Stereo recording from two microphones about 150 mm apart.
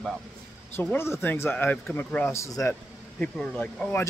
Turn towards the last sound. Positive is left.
turn(degrees=10)  # may be behind; listen again after turning